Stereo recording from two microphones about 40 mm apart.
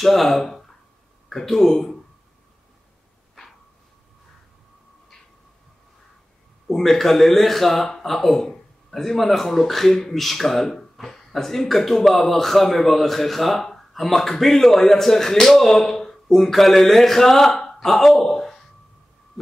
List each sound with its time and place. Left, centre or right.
0.0 s speech: centre
6.7 s speech: centre
17.5 s a sound: centre
17.7 s speech: centre
19.4 s heart sounds: centre